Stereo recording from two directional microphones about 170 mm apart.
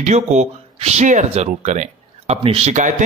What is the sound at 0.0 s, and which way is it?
Speech, 45° right (ahead or behind).